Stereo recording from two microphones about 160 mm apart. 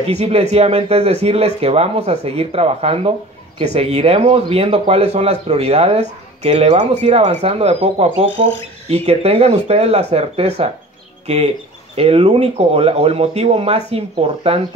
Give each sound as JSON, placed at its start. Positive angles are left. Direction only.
{"t": 0.0, "sound": "speech", "side_deg": -40}
{"t": 11.9, "sound": "speech", "side_deg": -40}